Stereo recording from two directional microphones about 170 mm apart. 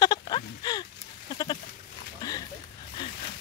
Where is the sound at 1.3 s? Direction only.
25° left (ahead or behind).